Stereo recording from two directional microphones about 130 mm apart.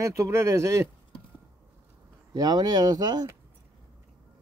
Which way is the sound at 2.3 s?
30° right (ahead or behind).